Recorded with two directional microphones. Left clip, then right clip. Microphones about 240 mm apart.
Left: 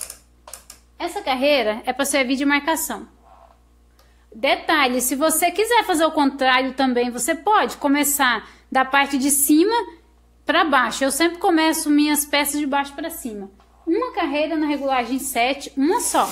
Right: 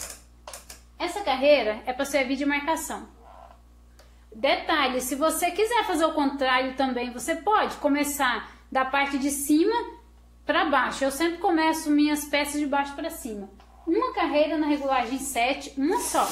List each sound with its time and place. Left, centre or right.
0.9 s a woman's voice: left
4.4 s a woman's voice: left